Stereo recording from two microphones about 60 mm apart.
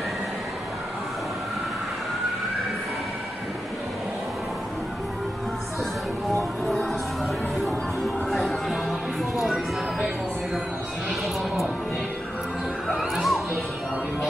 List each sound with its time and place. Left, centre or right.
6.3 s music: centre
8.3 s music: centre
12.8 s music: centre